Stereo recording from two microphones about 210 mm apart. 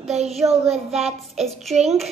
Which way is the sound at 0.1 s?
30° right (ahead or behind).